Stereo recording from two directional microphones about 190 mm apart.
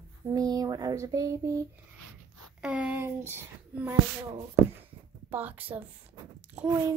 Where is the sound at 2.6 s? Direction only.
5° right (ahead or behind).